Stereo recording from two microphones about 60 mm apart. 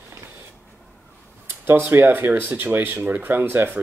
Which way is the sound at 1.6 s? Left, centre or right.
Right.